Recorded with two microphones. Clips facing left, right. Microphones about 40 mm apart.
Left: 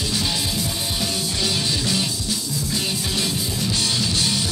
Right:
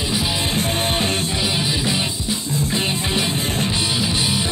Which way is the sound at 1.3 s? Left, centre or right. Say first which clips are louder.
Right 2 dB; right.